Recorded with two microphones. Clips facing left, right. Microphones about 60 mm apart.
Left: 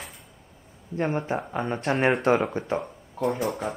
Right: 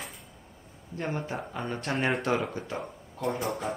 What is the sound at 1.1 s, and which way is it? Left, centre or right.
Speech, left.